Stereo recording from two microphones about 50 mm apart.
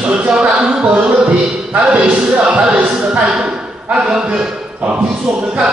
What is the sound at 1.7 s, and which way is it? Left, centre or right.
Speech, right.